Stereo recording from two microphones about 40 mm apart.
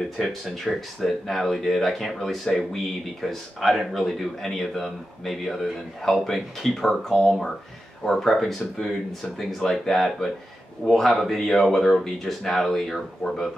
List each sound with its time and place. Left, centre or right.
0.2 s speech: centre